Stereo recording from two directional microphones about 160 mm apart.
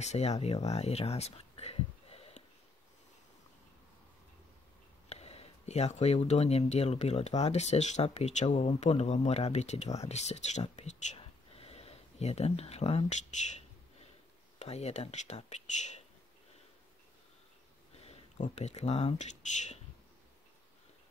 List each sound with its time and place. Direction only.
0.0 s speech: 45° left (ahead or behind)
5.1 s speech: 40° left (ahead or behind)
14.6 s speech: 40° left (ahead or behind)
18.0 s speech: 45° left (ahead or behind)